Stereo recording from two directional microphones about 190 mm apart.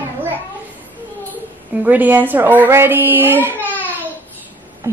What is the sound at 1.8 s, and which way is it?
A child's voice, 10° right (ahead or behind).